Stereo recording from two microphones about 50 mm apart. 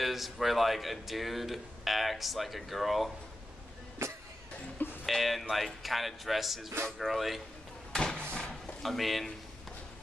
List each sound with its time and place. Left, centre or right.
0.0 s speech: centre
4.0 s vehicle: right
5.0 s speech: centre
7.9 s a sound: centre
8.8 s speech: centre